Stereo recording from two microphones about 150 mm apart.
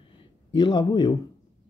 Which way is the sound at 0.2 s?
30° left (ahead or behind).